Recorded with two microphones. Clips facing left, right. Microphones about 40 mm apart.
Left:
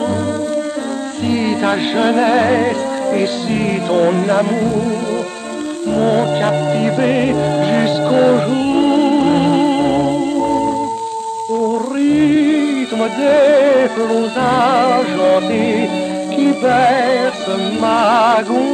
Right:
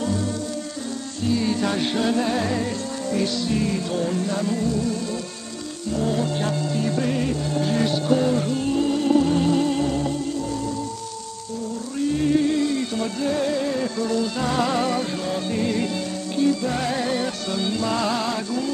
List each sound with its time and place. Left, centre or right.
1.2 s music: left
5.9 s music: left
12.0 s music: left